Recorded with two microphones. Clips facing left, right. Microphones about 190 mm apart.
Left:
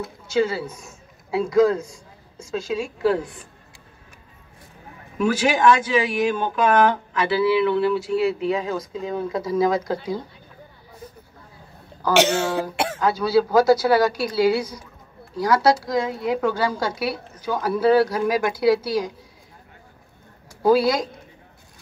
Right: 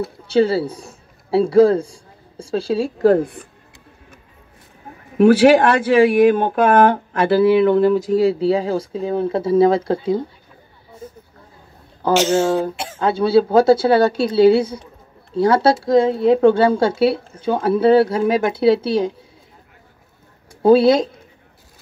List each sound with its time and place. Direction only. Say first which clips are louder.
0.0 s speech: right 5 dB; 35° right (ahead or behind); by 3.4 s 55° right (ahead or behind)
5.1 s speech: right 10 dB; 60° right (ahead or behind); by 10.2 s 25° right (ahead or behind)
12.1 s speech: right 4 dB; 65° left (ahead or behind)
13.0 s speech: right 5 dB; 25° right (ahead or behind)
20.6 s speech: right 6 dB; 25° right (ahead or behind)